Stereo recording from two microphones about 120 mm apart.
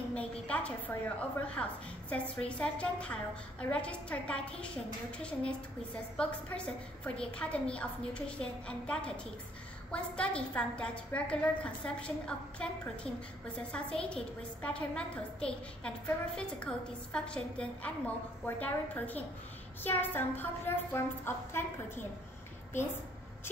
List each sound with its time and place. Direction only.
0.1 s a woman's voice: 10° left (ahead or behind)
6.1 s a woman's voice: 10° left (ahead or behind)